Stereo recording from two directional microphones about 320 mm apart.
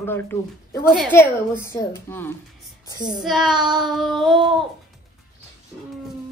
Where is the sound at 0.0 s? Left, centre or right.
Centre.